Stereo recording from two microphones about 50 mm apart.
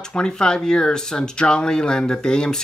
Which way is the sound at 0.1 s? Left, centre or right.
Centre.